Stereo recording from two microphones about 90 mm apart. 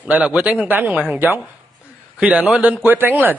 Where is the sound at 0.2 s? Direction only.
15° right (ahead or behind).